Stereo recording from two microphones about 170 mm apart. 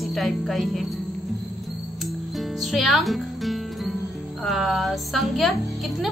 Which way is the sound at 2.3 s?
Centre (ahead or behind).